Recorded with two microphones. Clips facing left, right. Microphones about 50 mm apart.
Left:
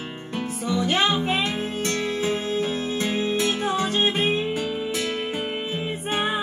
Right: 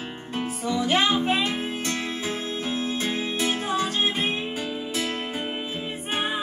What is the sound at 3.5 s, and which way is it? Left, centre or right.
Music, centre.